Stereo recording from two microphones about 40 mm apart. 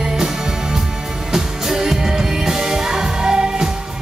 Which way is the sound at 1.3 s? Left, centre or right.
Centre.